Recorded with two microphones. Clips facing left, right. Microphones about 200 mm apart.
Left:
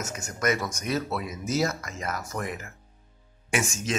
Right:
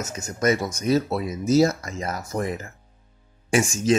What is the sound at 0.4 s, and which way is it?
Speech, 30° right (ahead or behind).